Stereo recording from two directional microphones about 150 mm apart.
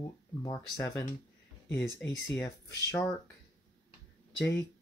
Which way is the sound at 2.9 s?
20° left (ahead or behind).